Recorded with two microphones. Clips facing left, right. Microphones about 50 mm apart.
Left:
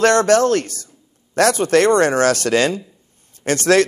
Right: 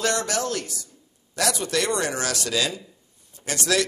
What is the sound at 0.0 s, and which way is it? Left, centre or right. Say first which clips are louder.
Speech: left 12 dB; left.